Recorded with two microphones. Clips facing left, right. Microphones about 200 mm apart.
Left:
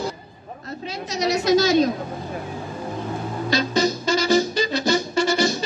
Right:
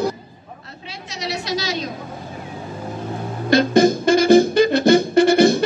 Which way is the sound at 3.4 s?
55° right (ahead or behind).